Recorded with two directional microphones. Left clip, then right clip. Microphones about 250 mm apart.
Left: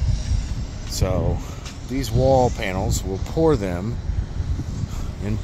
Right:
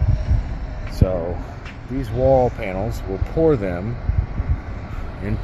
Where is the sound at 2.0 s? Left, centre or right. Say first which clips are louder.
Right 1 dB; left.